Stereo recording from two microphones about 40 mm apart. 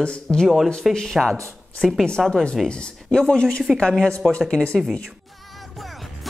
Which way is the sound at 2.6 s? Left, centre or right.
Left.